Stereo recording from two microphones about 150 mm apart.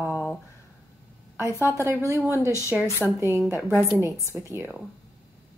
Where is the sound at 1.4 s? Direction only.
20° left (ahead or behind).